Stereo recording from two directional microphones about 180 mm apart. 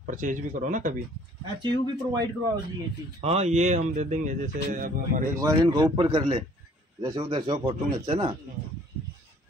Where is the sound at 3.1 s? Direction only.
35° right (ahead or behind).